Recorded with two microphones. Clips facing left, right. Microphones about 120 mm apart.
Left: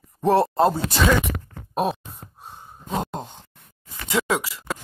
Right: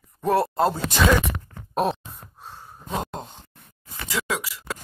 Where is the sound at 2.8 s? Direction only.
Centre (ahead or behind).